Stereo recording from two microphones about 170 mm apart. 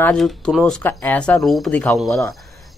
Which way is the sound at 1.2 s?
5° left (ahead or behind).